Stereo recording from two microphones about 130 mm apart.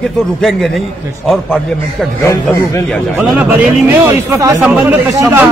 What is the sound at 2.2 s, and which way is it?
Speech, 25° left (ahead or behind).